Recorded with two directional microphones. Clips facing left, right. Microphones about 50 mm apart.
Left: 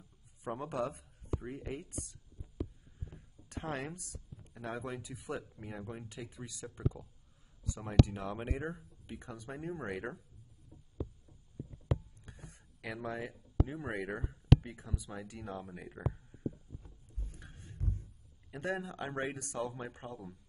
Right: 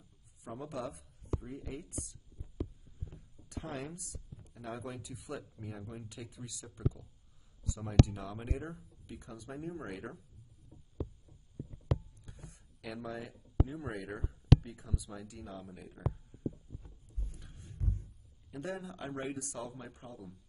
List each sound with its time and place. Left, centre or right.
0.4 s speech: left
3.4 s speech: left
8.1 s speech: left
12.3 s a sound: left
13.8 s speech: left
14.6 s speech: left
17.4 s a sound: left
18.5 s speech: left